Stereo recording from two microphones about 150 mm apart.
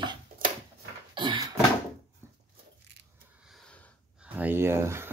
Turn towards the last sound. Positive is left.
turn(degrees=-15)  # may be behind; listen again after turning